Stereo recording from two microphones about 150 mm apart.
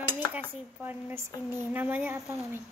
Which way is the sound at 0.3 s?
15° right (ahead or behind).